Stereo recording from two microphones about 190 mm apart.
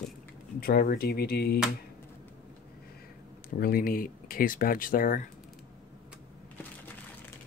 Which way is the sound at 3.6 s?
50° left (ahead or behind).